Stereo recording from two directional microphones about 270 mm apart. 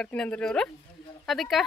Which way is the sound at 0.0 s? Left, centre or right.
Centre.